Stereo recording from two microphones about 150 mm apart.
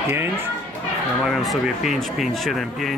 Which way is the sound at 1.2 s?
Centre (ahead or behind).